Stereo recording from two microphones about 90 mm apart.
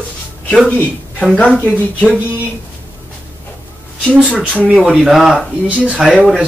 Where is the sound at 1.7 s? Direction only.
15° right (ahead or behind).